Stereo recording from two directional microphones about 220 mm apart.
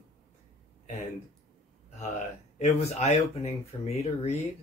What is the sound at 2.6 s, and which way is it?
Speech, 30° left (ahead or behind).